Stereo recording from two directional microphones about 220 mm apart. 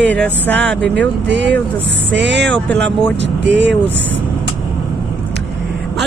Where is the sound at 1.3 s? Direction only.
55° right (ahead or behind).